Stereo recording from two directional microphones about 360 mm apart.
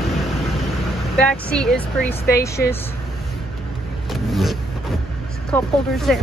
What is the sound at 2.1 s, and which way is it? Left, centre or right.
Speech, centre.